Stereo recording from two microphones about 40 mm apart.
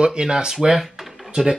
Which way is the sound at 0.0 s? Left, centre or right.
Right.